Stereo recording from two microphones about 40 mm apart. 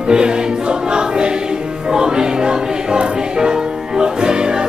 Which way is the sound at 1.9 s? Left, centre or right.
Centre.